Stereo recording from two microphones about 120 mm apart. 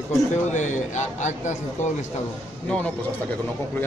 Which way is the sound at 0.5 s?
85° left.